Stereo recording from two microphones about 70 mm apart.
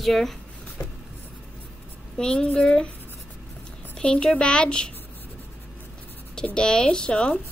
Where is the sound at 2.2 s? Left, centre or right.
Centre.